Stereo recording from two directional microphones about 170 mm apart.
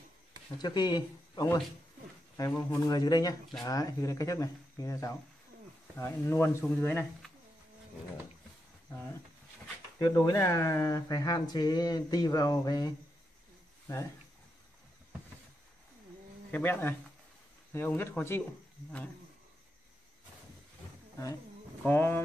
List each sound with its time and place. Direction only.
0.6 s speech: 25° left (ahead or behind)
9.9 s speech: 20° left (ahead or behind)
16.5 s speech: 10° left (ahead or behind)
21.8 s speech: 10° left (ahead or behind)